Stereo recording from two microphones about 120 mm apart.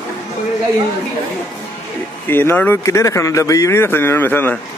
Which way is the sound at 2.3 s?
15° left (ahead or behind).